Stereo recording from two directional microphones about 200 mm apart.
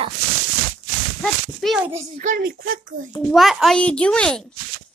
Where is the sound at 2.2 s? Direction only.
40° right (ahead or behind).